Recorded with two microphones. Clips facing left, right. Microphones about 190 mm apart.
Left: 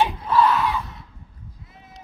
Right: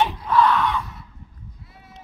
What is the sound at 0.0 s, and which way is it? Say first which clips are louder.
Battle cry: even; 5° left (ahead or behind).